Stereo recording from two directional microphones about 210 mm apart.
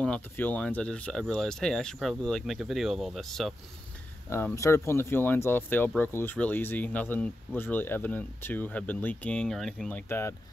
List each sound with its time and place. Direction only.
0.0 s speech: 5° left (ahead or behind)